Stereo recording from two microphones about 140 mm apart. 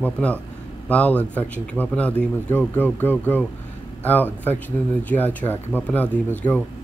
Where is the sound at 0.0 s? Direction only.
10° left (ahead or behind).